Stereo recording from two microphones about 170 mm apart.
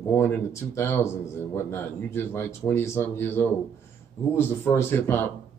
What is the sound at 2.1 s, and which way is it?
A man's voice, 15° left (ahead or behind).